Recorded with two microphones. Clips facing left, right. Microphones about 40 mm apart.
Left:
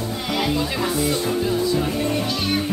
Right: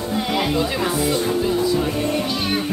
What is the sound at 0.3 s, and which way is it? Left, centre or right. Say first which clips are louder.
Music: even; centre.